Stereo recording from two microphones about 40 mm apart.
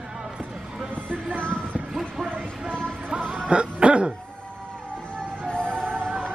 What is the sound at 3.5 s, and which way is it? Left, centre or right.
Throat clearing, right.